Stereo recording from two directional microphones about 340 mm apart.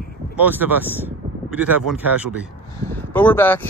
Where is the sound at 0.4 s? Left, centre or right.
Centre.